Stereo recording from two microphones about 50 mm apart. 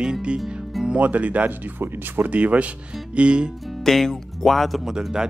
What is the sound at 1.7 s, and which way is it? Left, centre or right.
Speech, right.